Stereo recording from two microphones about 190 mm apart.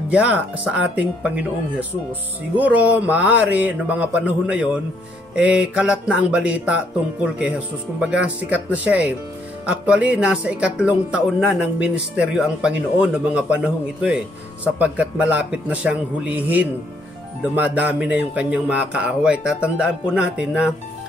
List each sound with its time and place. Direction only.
0.1 s speech: 5° right (ahead or behind)